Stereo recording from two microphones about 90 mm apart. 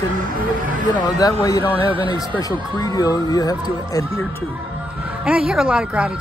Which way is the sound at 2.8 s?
45° left (ahead or behind).